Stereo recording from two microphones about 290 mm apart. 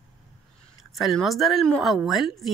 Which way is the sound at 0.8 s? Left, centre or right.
Centre.